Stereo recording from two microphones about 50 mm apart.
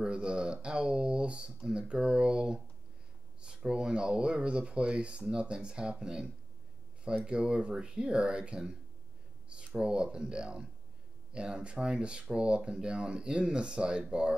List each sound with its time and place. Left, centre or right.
0.0 s speech: centre
9.8 s speech: centre